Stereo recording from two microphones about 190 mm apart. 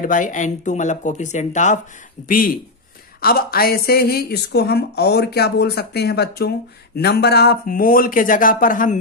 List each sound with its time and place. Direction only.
0.0 s a woman's voice: 45° left (ahead or behind)